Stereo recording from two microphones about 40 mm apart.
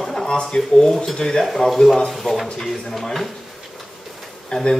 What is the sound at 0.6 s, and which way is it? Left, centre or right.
Speech, centre.